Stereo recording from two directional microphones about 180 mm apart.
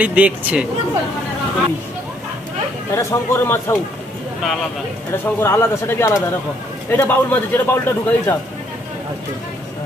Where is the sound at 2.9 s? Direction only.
15° left (ahead or behind).